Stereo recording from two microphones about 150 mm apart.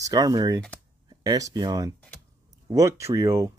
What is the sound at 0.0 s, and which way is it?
Speech, 25° right (ahead or behind).